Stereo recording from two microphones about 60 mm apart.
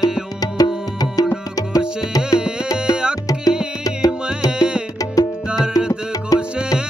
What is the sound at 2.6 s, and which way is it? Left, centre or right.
Music, left.